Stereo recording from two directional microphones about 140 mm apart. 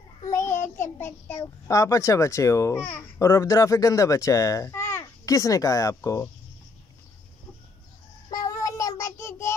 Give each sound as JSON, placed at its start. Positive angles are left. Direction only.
{"t": 0.2, "sound": "child singing", "side_deg": 20}
{"t": 1.4, "sound": "speech", "side_deg": 20}
{"t": 8.3, "sound": "child singing", "side_deg": 25}